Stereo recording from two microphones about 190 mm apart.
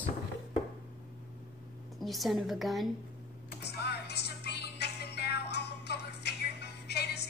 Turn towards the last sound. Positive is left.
turn(degrees=60)  # may be behind; listen again after turning